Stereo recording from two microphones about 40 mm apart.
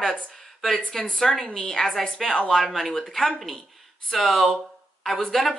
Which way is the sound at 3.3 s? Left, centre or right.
Centre.